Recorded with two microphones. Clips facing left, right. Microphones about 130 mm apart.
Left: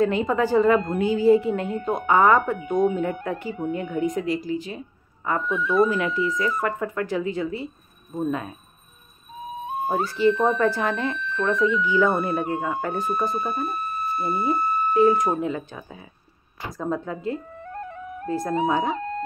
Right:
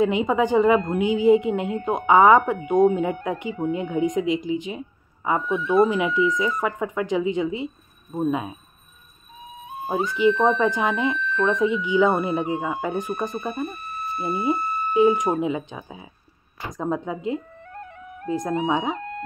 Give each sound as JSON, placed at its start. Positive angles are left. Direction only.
{"t": 0.0, "sound": "speech", "side_deg": -15}
{"t": 9.8, "sound": "speech", "side_deg": -15}
{"t": 14.1, "sound": "speech", "side_deg": -25}
{"t": 14.4, "sound": "speech", "side_deg": -15}
{"t": 17.8, "sound": "music", "side_deg": 40}
{"t": 18.7, "sound": "speech", "side_deg": -15}